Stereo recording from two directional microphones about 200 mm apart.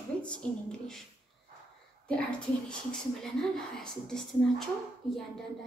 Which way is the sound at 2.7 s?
5° left (ahead or behind).